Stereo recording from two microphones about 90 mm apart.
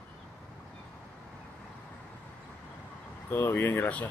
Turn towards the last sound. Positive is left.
turn(degrees=20)  # may be behind; listen again after turning